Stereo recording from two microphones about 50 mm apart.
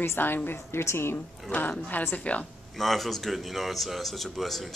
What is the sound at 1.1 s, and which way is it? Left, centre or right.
Speech, left.